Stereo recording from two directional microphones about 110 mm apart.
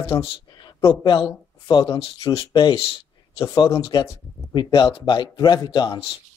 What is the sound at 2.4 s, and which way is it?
A man's voice, 45° left (ahead or behind).